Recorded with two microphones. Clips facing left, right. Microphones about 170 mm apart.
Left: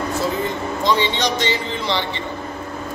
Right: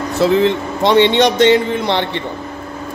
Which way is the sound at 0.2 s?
85° right.